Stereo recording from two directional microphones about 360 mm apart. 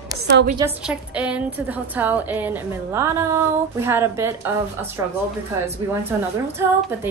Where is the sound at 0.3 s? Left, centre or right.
Right.